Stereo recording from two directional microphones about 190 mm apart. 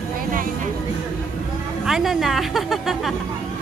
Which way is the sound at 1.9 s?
Centre (ahead or behind).